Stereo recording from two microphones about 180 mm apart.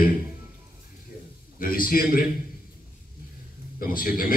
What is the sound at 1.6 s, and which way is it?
Speech, 55° left (ahead or behind).